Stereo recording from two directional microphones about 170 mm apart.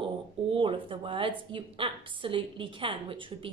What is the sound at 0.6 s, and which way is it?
A woman's voice, 30° right (ahead or behind).